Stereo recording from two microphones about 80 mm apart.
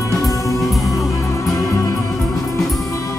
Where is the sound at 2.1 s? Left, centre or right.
Centre.